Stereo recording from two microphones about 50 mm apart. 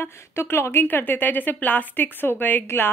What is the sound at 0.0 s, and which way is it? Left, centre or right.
A woman's voice, left.